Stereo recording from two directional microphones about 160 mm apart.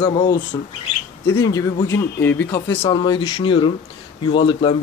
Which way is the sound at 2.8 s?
30° left (ahead or behind).